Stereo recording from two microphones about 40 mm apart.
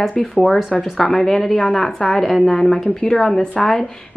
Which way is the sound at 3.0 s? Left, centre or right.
Centre.